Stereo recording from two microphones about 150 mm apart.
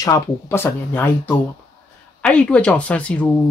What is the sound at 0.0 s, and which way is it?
Speech, 20° left (ahead or behind).